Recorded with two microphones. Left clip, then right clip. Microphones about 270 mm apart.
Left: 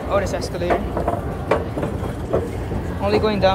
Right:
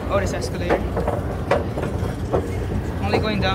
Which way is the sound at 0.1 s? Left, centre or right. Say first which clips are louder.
Left 2 dB; centre.